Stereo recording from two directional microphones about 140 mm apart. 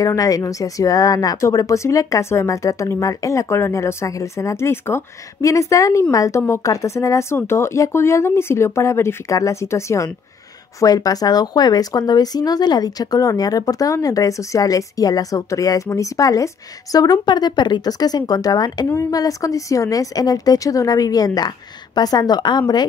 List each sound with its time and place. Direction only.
0.0 s speech: 25° left (ahead or behind)